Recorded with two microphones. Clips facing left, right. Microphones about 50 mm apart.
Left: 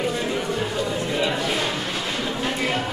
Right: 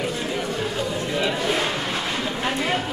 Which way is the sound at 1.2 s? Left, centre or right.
Centre.